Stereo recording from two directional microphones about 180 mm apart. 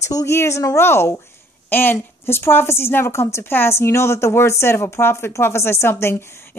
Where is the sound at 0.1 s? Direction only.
15° left (ahead or behind).